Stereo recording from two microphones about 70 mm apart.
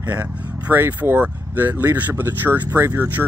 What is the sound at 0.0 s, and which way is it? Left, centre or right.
Speech, right.